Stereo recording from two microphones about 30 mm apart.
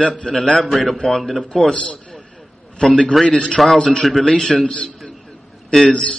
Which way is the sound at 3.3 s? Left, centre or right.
Left.